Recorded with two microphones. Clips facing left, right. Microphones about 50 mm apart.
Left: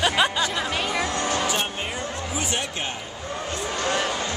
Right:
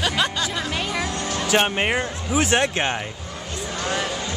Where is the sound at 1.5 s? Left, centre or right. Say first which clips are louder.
Right 7 dB; right.